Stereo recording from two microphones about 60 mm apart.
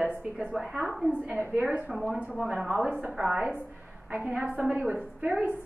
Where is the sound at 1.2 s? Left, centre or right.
Right.